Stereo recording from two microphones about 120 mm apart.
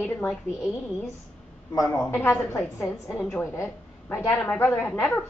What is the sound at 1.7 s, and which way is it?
A woman's voice, 30° left (ahead or behind).